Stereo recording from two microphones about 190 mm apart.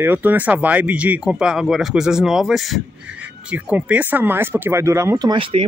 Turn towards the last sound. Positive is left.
turn(degrees=-25)  # may be behind; listen again after turning